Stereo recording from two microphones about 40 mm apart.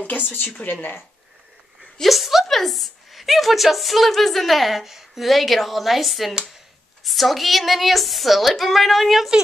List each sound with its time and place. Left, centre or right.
0.0 s speech: left
2.0 s a woman's voice: centre